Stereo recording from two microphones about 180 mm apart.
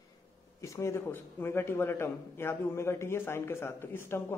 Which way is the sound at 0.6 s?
15° left (ahead or behind).